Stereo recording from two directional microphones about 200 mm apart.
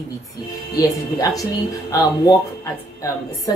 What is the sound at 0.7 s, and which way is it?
Speech, 15° left (ahead or behind).